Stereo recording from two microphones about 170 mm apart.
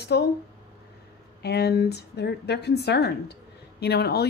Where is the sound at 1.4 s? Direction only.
75° left (ahead or behind).